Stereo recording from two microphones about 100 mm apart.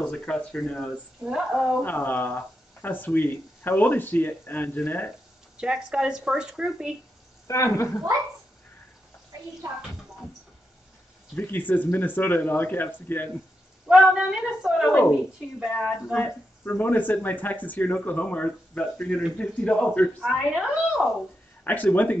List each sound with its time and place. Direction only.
0.1 s speech: 5° left (ahead or behind)
1.2 s a woman's voice: 5° right (ahead or behind)
1.8 s speech: 20° left (ahead or behind)
5.6 s speech: 10° right (ahead or behind)
7.4 s speech: 30° left (ahead or behind)
11.3 s speech: 20° left (ahead or behind)
13.8 s a woman's voice: 5° right (ahead or behind)
15.7 s speech: 10° left (ahead or behind)
20.2 s a woman's voice: centre (ahead or behind)
21.6 s speech: 15° left (ahead or behind)